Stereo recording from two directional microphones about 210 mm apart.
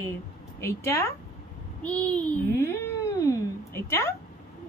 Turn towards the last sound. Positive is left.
turn(degrees=10)  # may be behind; listen again after turning